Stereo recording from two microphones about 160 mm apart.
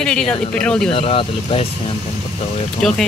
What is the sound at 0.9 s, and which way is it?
Speech, 35° left (ahead or behind).